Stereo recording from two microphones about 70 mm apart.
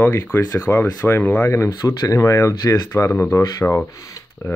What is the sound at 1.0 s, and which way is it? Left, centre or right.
Speech, left.